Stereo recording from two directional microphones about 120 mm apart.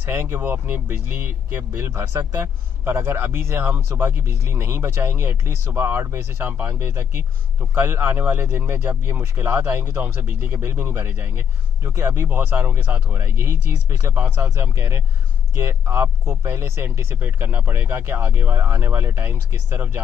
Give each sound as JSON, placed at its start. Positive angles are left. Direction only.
{"t": 0.0, "sound": "speech", "side_deg": -20}